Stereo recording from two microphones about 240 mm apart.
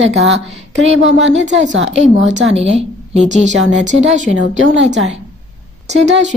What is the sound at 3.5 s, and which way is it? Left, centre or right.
Speech, right.